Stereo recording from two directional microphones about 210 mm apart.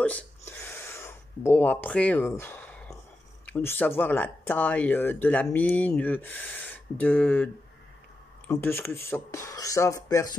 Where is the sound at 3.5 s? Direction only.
10° left (ahead or behind).